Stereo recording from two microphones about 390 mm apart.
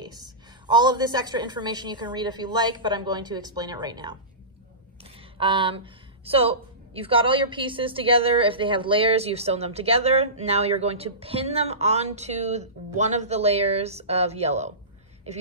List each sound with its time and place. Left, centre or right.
0.0 s a woman's voice: centre
5.4 s a woman's voice: centre